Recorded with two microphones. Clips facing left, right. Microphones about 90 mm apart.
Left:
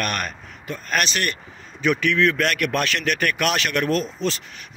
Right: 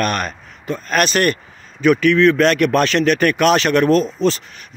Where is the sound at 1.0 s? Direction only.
45° right (ahead or behind).